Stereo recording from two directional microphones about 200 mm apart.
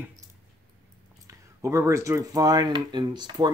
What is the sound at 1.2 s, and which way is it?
Speech, 15° right (ahead or behind).